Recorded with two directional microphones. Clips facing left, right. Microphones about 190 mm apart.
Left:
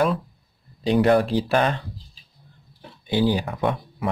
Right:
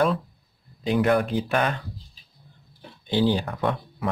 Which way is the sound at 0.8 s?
30° left (ahead or behind).